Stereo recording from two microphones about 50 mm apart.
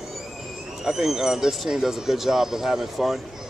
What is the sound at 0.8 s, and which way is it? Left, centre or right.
A man's voice, centre.